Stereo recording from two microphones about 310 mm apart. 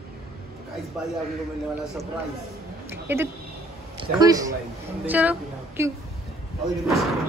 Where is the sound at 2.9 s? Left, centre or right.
Centre.